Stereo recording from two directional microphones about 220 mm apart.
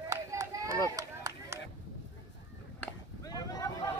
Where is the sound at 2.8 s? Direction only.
15° left (ahead or behind).